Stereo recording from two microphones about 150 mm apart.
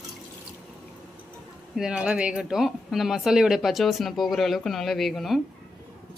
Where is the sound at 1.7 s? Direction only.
5° right (ahead or behind).